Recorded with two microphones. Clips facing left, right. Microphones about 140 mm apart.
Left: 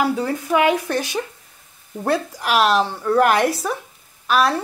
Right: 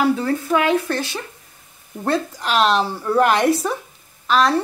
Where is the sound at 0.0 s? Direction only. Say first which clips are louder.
Right 2 dB; 15° left (ahead or behind).